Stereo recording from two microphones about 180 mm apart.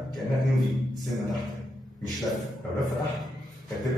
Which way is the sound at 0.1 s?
Centre (ahead or behind).